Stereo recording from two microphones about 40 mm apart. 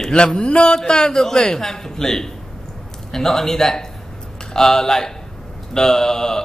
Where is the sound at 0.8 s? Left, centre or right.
Centre.